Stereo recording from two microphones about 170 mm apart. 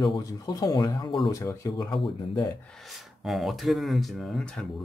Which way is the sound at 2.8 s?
Centre (ahead or behind).